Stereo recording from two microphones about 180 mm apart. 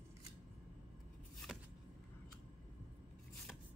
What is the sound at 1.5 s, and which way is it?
Vehicle, 5° right (ahead or behind).